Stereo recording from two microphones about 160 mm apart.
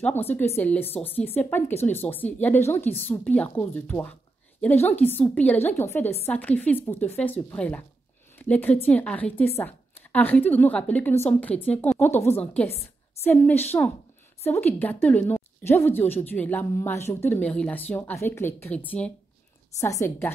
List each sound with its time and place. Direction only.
0.6 s speech: 10° left (ahead or behind)
13.2 s speech: 10° left (ahead or behind)